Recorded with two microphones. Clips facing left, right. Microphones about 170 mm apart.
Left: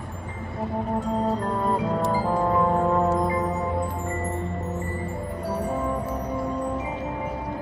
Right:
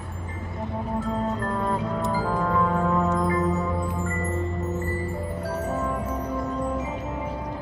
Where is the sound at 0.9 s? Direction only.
15° left (ahead or behind); by 3.3 s 35° left (ahead or behind).